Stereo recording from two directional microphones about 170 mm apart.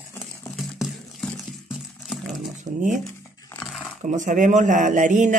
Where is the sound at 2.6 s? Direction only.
50° right (ahead or behind).